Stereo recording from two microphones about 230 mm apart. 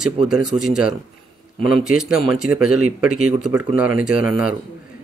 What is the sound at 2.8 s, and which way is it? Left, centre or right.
Speech, right.